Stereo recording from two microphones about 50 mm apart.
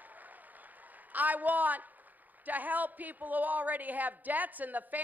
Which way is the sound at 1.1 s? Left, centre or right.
Right.